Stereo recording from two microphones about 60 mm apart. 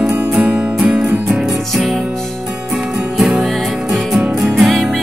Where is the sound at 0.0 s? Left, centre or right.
Centre.